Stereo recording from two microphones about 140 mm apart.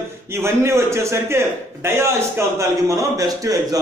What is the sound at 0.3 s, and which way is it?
A man's voice, 20° right (ahead or behind).